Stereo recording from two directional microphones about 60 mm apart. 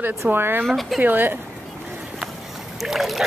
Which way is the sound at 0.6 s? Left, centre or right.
Centre.